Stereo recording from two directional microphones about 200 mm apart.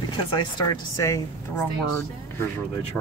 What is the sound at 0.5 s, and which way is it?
Speech, 15° left (ahead or behind).